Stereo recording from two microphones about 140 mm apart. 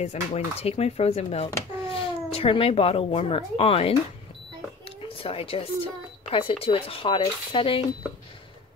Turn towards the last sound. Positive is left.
turn(degrees=40)  # may be behind; listen again after turning